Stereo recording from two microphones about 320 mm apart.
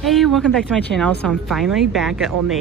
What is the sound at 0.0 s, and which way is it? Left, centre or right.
Speech, centre.